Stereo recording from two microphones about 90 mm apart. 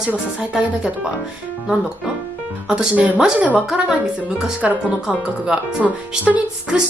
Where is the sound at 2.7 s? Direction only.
15° right (ahead or behind).